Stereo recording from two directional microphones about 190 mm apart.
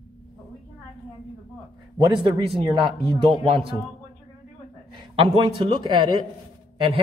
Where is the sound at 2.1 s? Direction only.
25° right (ahead or behind).